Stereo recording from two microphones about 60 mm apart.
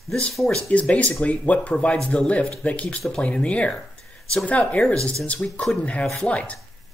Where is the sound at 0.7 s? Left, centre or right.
Left.